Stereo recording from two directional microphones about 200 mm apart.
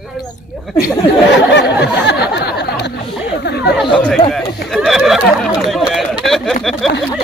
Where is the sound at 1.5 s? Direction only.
60° left (ahead or behind).